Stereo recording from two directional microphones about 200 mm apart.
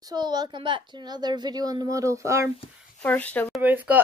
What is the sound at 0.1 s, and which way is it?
A child's voice, 20° right (ahead or behind).